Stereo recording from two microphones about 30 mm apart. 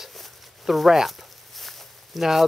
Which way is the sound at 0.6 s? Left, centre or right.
Centre.